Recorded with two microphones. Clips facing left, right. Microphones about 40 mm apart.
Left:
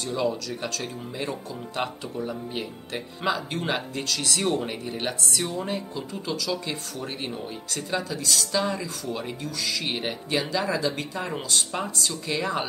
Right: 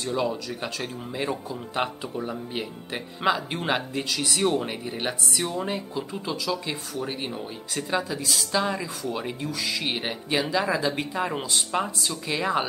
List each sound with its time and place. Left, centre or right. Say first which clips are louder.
0.0 s speech: even; centre